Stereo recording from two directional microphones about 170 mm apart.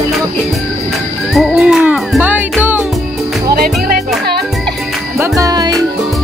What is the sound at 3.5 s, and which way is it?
Music, 60° right (ahead or behind).